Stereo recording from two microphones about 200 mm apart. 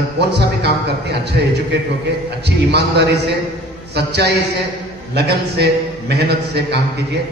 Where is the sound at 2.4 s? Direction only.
55° right (ahead or behind).